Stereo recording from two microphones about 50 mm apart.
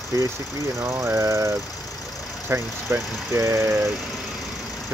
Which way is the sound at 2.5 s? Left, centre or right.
Right.